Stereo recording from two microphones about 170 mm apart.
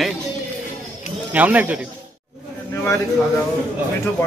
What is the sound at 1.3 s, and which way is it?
Speech, 10° right (ahead or behind).